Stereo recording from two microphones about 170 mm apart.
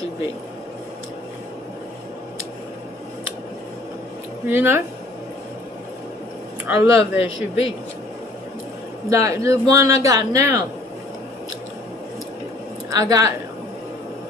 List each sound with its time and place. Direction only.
4.5 s speech: 15° right (ahead or behind)
6.6 s speech: 10° right (ahead or behind)
6.9 s speech: 90° left
9.1 s speech: 20° right (ahead or behind)
12.9 s speech: 20° right (ahead or behind)